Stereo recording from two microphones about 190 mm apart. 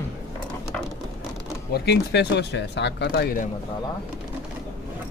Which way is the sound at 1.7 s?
60° left (ahead or behind).